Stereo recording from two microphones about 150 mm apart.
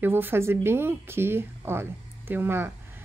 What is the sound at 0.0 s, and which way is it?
Speech, 15° right (ahead or behind).